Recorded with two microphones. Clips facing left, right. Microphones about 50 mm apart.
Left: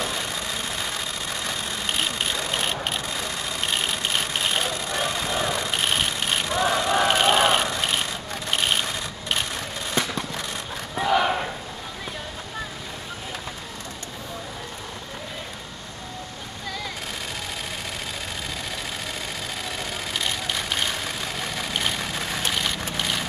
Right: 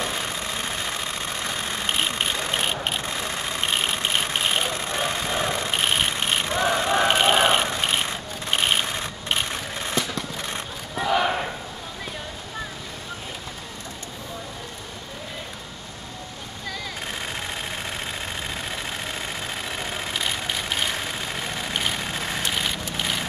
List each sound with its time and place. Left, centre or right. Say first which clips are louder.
1.7 s vehicle: right 2 dB; right
3.0 s vehicle: right 1 dB; right
11.0 s battle cry: left 1 dB; centre
22.5 s vehicle: even; centre